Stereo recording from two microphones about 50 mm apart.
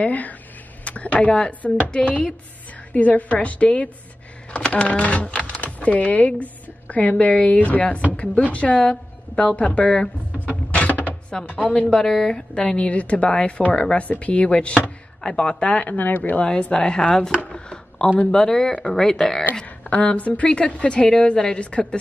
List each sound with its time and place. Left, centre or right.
0.0 s a woman's voice: left
2.9 s a woman's voice: left
10.7 s a sound: left
11.4 s a woman's voice: left
11.9 s a woman's voice: centre
15.9 s speech: left
16.7 s speech: centre
17.5 s a sound: centre
18.2 s speech: centre
19.5 s a woman's voice: left